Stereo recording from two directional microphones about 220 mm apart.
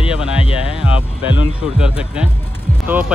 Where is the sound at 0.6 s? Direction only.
5° right (ahead or behind).